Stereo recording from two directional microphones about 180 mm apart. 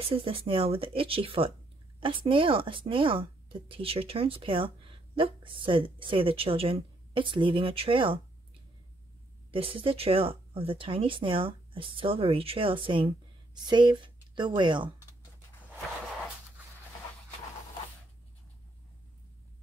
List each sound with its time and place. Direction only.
0.1 s speech: 30° right (ahead or behind)
9.5 s speech: 30° right (ahead or behind)